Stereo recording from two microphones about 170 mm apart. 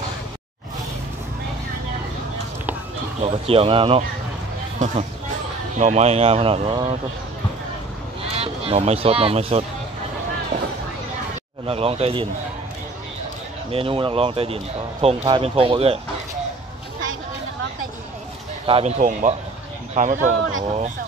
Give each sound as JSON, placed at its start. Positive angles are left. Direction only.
{"t": 3.2, "sound": "speech", "side_deg": -35}
{"t": 4.7, "sound": "speech", "side_deg": -45}
{"t": 8.2, "sound": "speech", "side_deg": -35}
{"t": 11.6, "sound": "speech", "side_deg": -35}
{"t": 13.7, "sound": "speech", "side_deg": -35}
{"t": 18.7, "sound": "speech", "side_deg": -35}
{"t": 18.9, "sound": "speech", "side_deg": -50}